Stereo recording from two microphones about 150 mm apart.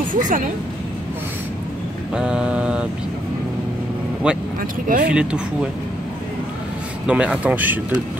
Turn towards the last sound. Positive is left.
turn(degrees=-10)  # may be behind; listen again after turning